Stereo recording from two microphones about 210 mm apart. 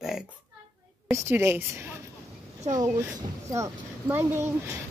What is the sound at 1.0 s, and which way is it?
A woman's voice, 10° right (ahead or behind).